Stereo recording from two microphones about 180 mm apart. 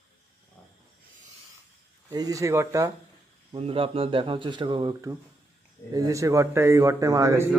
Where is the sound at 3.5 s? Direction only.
30° right (ahead or behind); by 7.5 s 15° right (ahead or behind).